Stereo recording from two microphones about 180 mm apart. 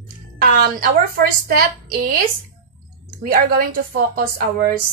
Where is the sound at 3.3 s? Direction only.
55° right (ahead or behind).